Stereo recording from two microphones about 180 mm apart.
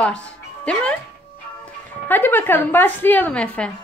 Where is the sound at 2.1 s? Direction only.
10° left (ahead or behind).